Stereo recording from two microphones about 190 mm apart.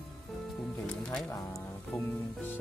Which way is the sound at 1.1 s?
5° left (ahead or behind).